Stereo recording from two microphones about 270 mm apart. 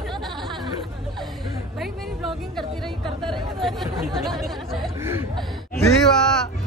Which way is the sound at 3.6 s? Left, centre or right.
Centre.